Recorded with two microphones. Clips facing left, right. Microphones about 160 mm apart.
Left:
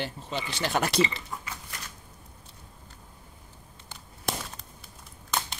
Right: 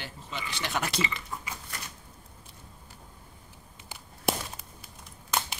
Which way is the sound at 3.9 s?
10° right (ahead or behind).